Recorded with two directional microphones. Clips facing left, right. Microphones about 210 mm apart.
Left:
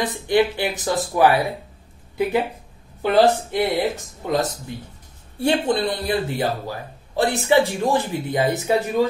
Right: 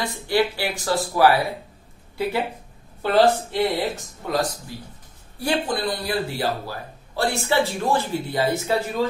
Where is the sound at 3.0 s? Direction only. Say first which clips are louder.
Left 1 dB; 15° left (ahead or behind).